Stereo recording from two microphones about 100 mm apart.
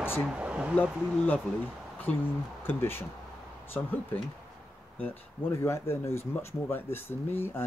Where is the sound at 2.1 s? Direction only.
15° left (ahead or behind).